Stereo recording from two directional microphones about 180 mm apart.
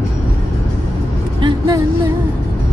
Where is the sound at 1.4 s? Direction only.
25° right (ahead or behind).